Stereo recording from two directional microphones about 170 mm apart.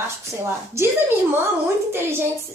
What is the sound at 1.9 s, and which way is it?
Speech, 15° right (ahead or behind).